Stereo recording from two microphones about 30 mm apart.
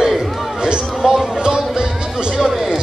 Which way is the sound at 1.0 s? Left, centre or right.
Centre.